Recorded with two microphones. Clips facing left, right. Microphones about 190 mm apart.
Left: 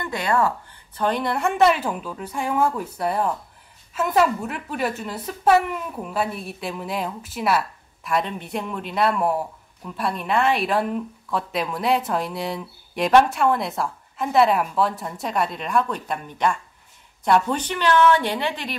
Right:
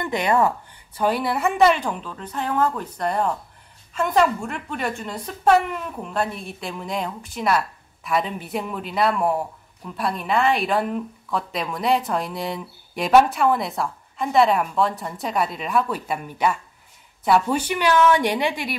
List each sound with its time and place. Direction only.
0.0 s speech: 20° right (ahead or behind)
0.9 s a woman's voice: 5° right (ahead or behind)